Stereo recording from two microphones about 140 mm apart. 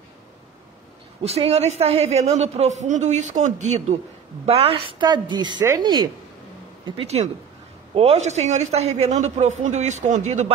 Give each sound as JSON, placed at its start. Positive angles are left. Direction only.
{"t": 1.2, "sound": "a man's voice", "side_deg": -50}
{"t": 4.5, "sound": "a woman's voice", "side_deg": -45}
{"t": 7.0, "sound": "a man's voice", "side_deg": -50}